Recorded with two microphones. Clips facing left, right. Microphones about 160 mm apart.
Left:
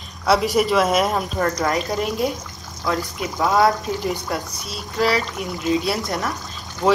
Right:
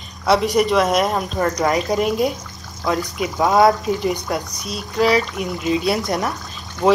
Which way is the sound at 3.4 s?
20° right (ahead or behind).